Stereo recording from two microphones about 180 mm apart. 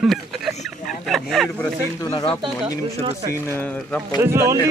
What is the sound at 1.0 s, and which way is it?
Speech, centre (ahead or behind).